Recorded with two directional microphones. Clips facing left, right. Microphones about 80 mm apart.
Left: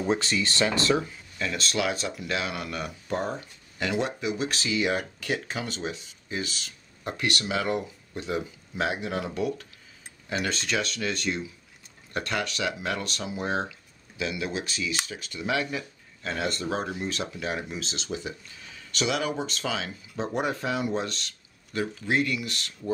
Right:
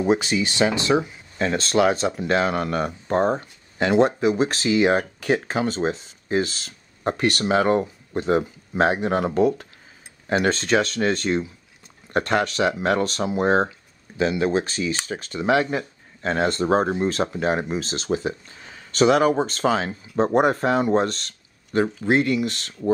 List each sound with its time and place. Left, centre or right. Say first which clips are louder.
0.0 s speech: right 6 dB; centre
1.4 s speech: right 9 dB; right